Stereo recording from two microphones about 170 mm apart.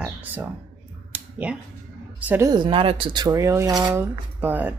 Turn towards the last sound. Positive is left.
turn(degrees=-10)  # may be behind; listen again after turning